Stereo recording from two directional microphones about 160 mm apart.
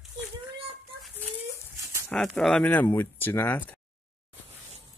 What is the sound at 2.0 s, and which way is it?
Speech, 5° left (ahead or behind).